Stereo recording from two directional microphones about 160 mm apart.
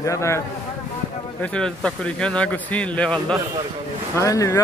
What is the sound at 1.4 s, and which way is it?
Speech, 5° left (ahead or behind).